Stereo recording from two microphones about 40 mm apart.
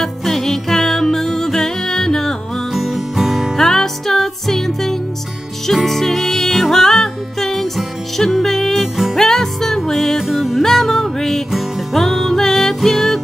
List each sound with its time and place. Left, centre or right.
0.0 s music: centre
2.7 s music: centre
3.5 s music: centre
10.2 s music: centre
10.6 s music: centre